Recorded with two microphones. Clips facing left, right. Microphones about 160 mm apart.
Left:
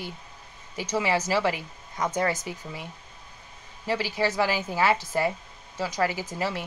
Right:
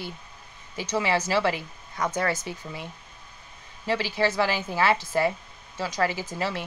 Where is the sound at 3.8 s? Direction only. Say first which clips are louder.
Right 1 dB; 15° left (ahead or behind).